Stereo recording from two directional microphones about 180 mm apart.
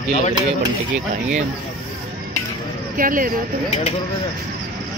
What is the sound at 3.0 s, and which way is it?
Speech, 50° right (ahead or behind).